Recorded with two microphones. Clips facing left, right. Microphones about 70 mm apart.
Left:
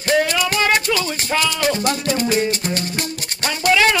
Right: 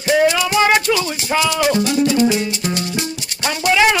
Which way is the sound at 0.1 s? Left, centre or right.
Centre.